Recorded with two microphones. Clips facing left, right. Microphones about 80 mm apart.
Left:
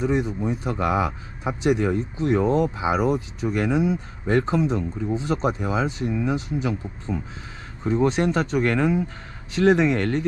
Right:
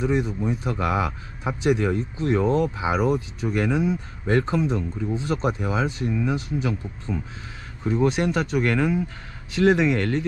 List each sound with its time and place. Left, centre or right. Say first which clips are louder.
0.0 s speech: even; left